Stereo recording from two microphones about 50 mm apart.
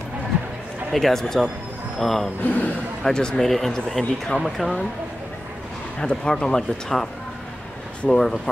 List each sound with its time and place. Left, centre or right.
0.9 s speech: centre
2.4 s a man's voice: left
3.0 s speech: centre
3.4 s speech: centre
5.9 s speech: centre
8.1 s speech: centre